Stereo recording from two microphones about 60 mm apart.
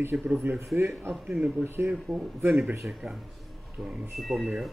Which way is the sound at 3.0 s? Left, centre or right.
Centre.